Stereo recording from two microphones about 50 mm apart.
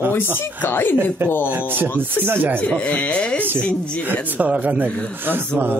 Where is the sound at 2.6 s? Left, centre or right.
Left.